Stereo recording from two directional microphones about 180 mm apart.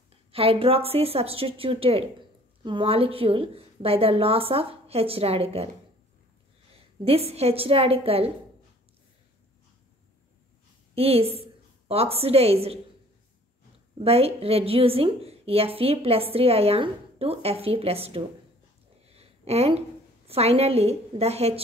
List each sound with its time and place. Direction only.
0.3 s a woman's voice: 30° right (ahead or behind)
7.1 s a woman's voice: 35° right (ahead or behind)
11.0 s a woman's voice: 35° right (ahead or behind)
13.9 s a woman's voice: 35° right (ahead or behind)
19.0 s a sound: 35° right (ahead or behind)
20.2 s a woman's voice: 35° right (ahead or behind)